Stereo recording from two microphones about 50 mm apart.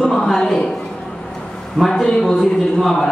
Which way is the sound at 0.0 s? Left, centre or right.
Centre.